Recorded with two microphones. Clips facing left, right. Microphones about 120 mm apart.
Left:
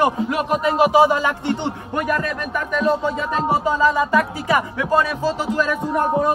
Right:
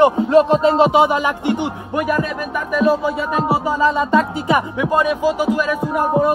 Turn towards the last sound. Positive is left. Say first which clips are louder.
# right 2 dB
turn(degrees=-10)  # may be behind; listen again after turning